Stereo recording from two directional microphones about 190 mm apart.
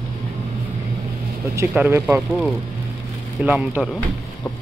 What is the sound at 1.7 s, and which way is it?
Speech, 10° right (ahead or behind).